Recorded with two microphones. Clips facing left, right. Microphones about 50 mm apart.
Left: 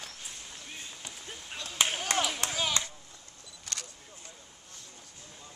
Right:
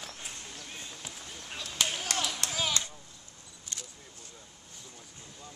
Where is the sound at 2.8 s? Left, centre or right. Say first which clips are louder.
Left 2 dB; left.